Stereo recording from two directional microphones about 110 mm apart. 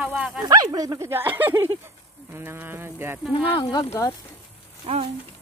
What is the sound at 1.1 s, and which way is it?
Speech, 20° right (ahead or behind).